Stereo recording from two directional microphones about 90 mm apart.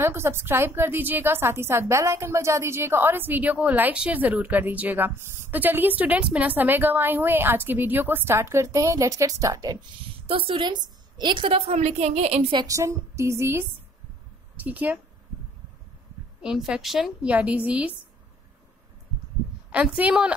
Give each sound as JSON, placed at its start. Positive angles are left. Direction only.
{"t": 0.0, "sound": "a woman's voice", "side_deg": -30}
{"t": 10.2, "sound": "a woman's voice", "side_deg": -85}
{"t": 12.1, "sound": "a woman's voice", "side_deg": -85}
{"t": 12.6, "sound": "speech", "side_deg": -35}
{"t": 14.6, "sound": "a woman's voice", "side_deg": -20}
{"t": 16.4, "sound": "speech", "side_deg": -5}
{"t": 17.3, "sound": "a woman's voice", "side_deg": -15}
{"t": 19.7, "sound": "a woman's voice", "side_deg": -15}